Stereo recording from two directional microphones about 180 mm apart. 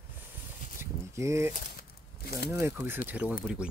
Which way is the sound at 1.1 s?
15° right (ahead or behind).